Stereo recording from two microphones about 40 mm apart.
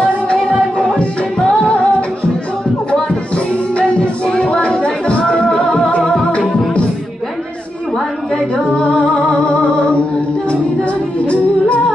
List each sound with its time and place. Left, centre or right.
0.4 s music: centre
4.3 s music: left
9.0 s music: centre
9.5 s music: left